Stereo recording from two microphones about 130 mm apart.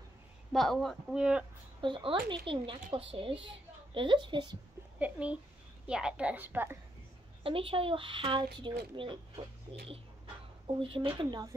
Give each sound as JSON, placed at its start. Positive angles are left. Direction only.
{"t": 0.5, "sound": "speech", "side_deg": 0}
{"t": 1.8, "sound": "a woman's voice", "side_deg": -40}
{"t": 4.9, "sound": "a woman's voice", "side_deg": -10}
{"t": 7.4, "sound": "a woman's voice", "side_deg": -45}